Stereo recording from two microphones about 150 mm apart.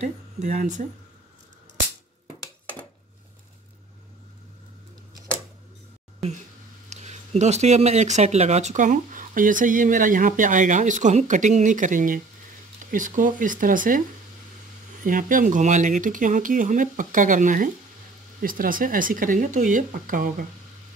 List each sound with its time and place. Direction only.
0.0 s speech: 50° right (ahead or behind)
6.9 s speech: 50° right (ahead or behind); by 14.0 s 65° right (ahead or behind)
15.0 s speech: 65° right (ahead or behind)